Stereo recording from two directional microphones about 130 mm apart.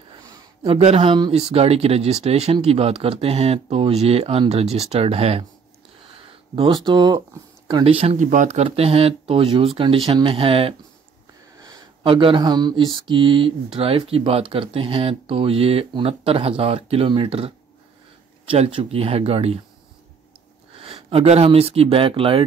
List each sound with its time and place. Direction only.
0.1 s a sound: 30° right (ahead or behind)
0.7 s speech: 55° right (ahead or behind)
1.1 s speech: 35° right (ahead or behind)
1.4 s speech: 50° right (ahead or behind)
6.1 s a sound: 45° right (ahead or behind)
6.7 s speech: 35° right (ahead or behind)
7.8 s speech: 50° right (ahead or behind)
8.2 s speech: 75° right (ahead or behind); by 10.7 s 45° right (ahead or behind)
11.6 s a sound: 30° right (ahead or behind)
12.1 s speech: 40° right (ahead or behind)
20.7 s speech: 45° right (ahead or behind)